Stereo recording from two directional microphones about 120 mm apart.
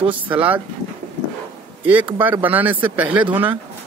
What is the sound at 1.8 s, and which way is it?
Speech, 10° right (ahead or behind).